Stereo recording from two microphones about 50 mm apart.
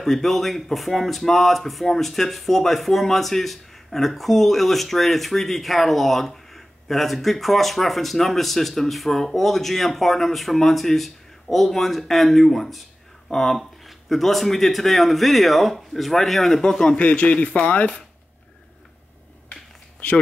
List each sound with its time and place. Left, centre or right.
0.0 s speech: centre
17.0 s speech: left